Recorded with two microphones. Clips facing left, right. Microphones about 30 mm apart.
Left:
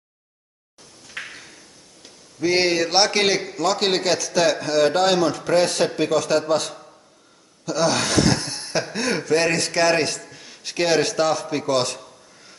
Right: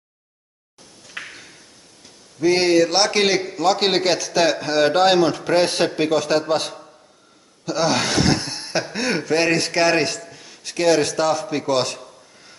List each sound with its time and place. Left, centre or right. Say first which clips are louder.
2.4 s a man's voice: right 4 dB; centre
10.4 s a man's voice: right 4 dB; centre